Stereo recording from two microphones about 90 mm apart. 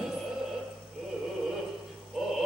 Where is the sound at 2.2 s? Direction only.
5° right (ahead or behind).